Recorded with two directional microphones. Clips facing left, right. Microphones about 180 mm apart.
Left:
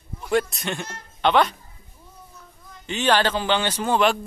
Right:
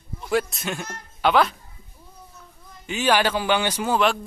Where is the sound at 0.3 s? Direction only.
Centre (ahead or behind).